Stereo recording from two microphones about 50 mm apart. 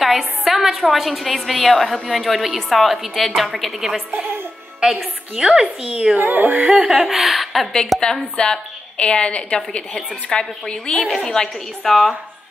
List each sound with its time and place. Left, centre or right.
0.4 s a woman's voice: centre
4.8 s a woman's voice: centre
6.1 s a sound: right
6.5 s a woman's voice: centre
8.4 s a woman's voice: left